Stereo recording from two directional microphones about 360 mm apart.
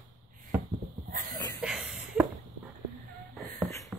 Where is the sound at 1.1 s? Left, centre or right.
Right.